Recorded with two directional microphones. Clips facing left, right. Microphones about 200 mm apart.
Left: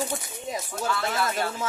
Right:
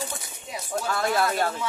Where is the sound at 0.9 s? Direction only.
45° right (ahead or behind).